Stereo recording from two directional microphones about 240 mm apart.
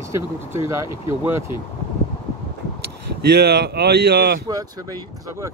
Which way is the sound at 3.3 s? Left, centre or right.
Right.